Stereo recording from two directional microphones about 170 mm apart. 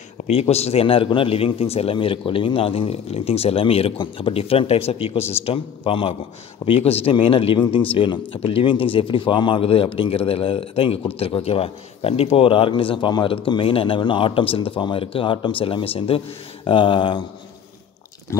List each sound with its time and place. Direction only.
0.3 s speech: 35° left (ahead or behind)